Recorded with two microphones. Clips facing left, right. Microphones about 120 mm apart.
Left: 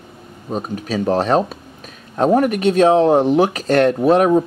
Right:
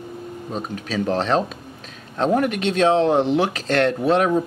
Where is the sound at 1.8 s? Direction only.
10° left (ahead or behind).